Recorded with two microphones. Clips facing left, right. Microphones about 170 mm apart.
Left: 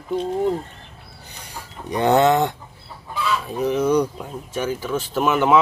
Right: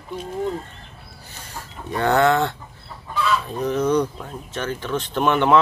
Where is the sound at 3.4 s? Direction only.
10° left (ahead or behind).